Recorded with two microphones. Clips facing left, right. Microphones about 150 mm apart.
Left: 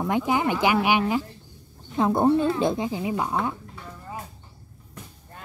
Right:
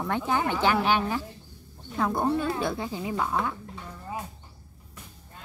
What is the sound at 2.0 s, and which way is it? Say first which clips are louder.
Speech: left 6 dB; 25° left (ahead or behind).